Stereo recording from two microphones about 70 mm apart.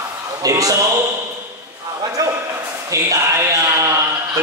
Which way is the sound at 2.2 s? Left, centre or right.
Right.